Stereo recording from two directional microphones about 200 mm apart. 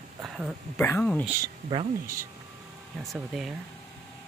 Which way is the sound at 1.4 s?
25° right (ahead or behind).